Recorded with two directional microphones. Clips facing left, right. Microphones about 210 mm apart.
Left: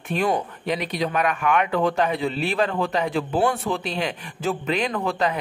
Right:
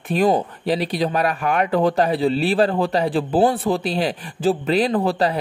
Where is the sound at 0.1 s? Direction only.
35° right (ahead or behind).